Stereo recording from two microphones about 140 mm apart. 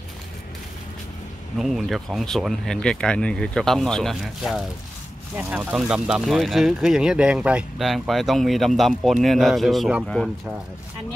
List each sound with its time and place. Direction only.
1.6 s speech: centre (ahead or behind)